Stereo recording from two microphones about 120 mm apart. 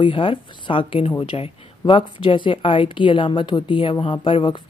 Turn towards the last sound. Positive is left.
turn(degrees=45)  # may be behind; listen again after turning